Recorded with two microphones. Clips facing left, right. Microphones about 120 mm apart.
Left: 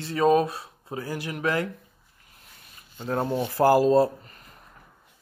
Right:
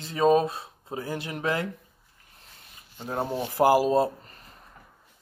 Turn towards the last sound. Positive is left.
turn(degrees=-15)  # may be behind; listen again after turning